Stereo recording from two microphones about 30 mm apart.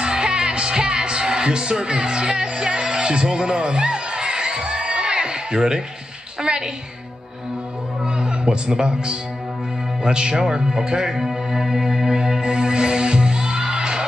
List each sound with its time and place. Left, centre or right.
0.0 s music: right
8.0 s speech: right
11.1 s music: centre; by 14.0 s right